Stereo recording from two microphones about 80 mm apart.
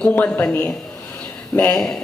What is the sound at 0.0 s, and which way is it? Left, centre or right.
Speech, left.